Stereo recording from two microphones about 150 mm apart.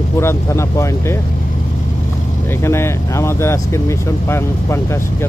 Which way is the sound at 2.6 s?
15° left (ahead or behind).